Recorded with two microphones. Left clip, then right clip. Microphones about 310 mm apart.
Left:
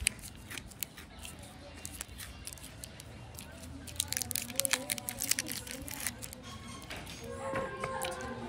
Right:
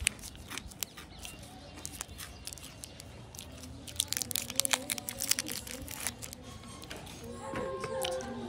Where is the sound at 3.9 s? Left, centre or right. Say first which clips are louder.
Right 2 dB; centre.